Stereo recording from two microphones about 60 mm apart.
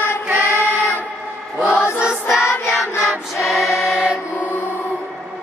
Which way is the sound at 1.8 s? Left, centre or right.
Centre.